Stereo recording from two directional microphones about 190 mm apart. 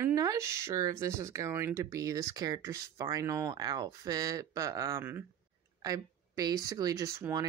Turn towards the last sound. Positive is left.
turn(degrees=-15)  # may be behind; listen again after turning